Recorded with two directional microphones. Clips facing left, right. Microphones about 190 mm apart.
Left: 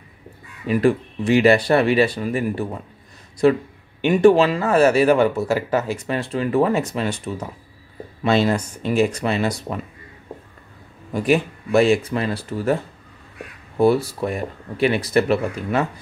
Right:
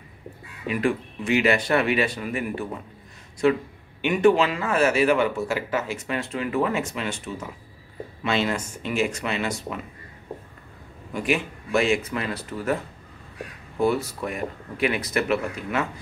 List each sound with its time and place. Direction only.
0.7 s speech: 35° left (ahead or behind)
4.0 s speech: 35° left (ahead or behind)
11.1 s speech: 35° left (ahead or behind)
13.7 s speech: 35° left (ahead or behind)